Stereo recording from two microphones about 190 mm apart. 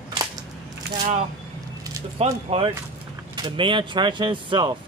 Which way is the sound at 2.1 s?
30° right (ahead or behind).